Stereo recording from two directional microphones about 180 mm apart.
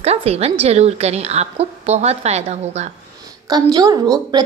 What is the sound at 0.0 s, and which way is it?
A woman's voice, 35° right (ahead or behind).